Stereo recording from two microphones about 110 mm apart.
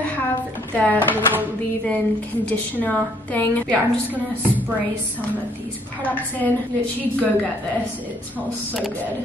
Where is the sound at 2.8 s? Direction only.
15° left (ahead or behind).